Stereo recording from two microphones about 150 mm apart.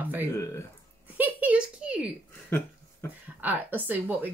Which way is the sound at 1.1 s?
10° right (ahead or behind).